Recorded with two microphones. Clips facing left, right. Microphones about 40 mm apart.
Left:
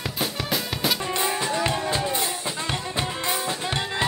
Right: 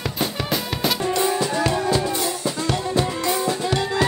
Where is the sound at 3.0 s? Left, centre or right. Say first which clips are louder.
Right 3 dB; left.